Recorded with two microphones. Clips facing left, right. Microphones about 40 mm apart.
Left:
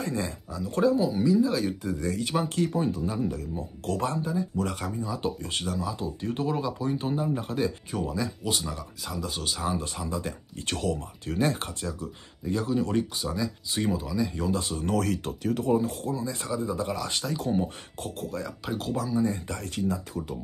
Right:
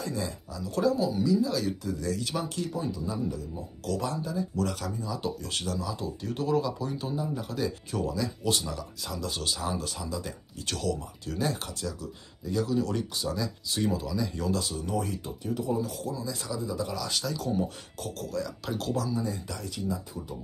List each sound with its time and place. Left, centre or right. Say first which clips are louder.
0.0 s speech: left 3 dB; left
2.5 s speech: left 6 dB; left
4.2 s speech: left 2 dB; left
5.5 s speech: left 2 dB; centre
7.1 s speech: left 4 dB; left
7.9 s speech: even; centre
9.8 s speech: left 2 dB; left
13.1 s speech: left 1 dB; centre
14.6 s speech: left 2 dB; left
14.9 s speech: left 5 dB; left
15.6 s speech: left 5 dB; left
18.7 s speech: left 2 dB; centre
19.2 s speech: left 5 dB; left